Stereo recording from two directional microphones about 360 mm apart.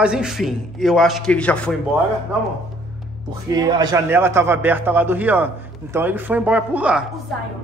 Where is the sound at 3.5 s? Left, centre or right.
Centre.